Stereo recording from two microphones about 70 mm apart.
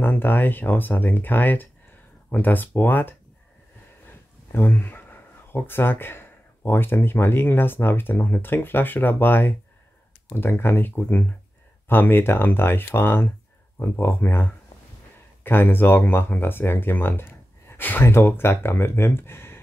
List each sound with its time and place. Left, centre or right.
0.0 s speech: left
4.5 s speech: left